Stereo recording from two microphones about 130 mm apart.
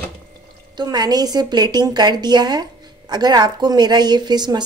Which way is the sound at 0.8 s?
30° right (ahead or behind).